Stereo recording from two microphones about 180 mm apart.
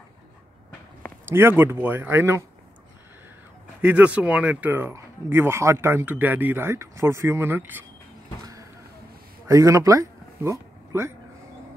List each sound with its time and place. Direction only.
1.2 s speech: 15° right (ahead or behind)
3.8 s speech: 10° right (ahead or behind)
9.5 s speech: 20° right (ahead or behind)